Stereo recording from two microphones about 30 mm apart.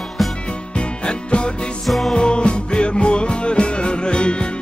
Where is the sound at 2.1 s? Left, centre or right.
Left.